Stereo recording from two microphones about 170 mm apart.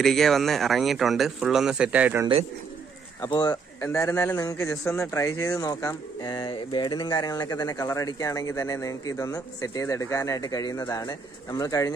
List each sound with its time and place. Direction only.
0.0 s speech: centre (ahead or behind)
3.2 s a man's voice: 20° left (ahead or behind)